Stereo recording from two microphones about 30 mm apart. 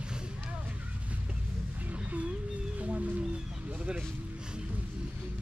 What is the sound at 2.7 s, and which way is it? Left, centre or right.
Music, right.